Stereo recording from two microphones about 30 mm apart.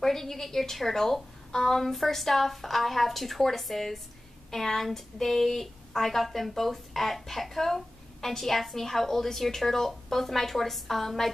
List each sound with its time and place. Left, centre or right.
0.0 s a woman's voice: centre